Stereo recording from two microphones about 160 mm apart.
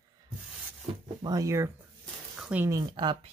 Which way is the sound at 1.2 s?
20° right (ahead or behind).